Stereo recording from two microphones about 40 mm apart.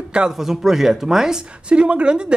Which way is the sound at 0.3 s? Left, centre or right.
Centre.